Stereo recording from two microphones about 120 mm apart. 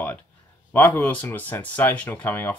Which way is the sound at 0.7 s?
15° left (ahead or behind).